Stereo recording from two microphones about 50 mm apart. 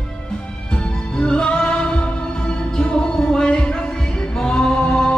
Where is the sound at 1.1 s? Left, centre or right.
Centre.